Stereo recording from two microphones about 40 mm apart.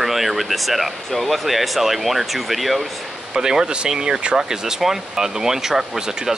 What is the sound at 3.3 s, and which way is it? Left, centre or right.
Speech, centre.